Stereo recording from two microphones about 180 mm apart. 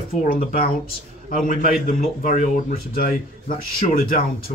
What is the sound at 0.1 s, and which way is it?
Speech, 55° left (ahead or behind).